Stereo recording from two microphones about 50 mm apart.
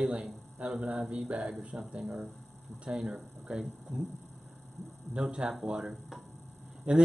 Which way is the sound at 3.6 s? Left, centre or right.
Centre.